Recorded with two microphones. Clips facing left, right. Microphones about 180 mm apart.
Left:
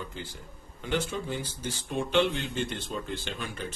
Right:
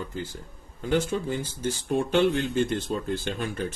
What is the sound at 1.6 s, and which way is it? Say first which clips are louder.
Speech: right 9 dB; 50° right (ahead or behind).